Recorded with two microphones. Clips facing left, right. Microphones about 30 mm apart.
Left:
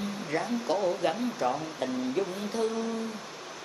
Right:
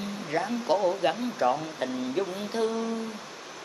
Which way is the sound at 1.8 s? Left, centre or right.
Right.